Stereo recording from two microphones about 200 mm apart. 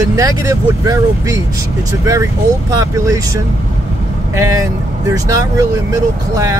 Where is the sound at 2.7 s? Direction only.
15° right (ahead or behind).